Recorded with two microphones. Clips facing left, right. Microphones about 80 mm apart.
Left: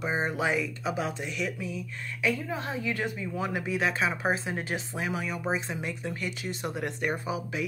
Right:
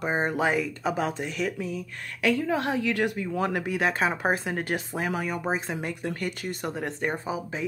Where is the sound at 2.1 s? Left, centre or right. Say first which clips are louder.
Right 5 dB; right.